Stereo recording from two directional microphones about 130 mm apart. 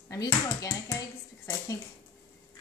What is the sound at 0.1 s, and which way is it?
Speech, 30° left (ahead or behind).